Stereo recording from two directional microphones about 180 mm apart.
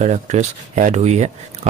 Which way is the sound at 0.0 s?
40° right (ahead or behind).